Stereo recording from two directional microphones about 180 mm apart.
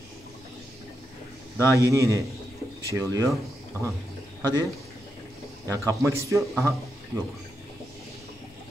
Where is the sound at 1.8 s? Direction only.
15° right (ahead or behind).